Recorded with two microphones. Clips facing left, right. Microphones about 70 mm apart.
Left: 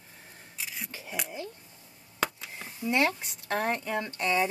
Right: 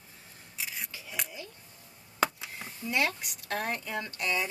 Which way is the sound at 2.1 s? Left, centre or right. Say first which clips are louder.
Right 2 dB; centre.